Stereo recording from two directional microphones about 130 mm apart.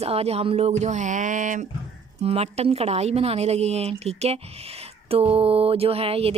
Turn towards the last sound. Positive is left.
turn(degrees=-50)  # may be behind; listen again after turning